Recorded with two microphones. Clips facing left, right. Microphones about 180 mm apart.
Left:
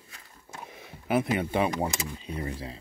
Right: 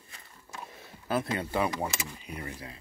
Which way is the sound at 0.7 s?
15° left (ahead or behind).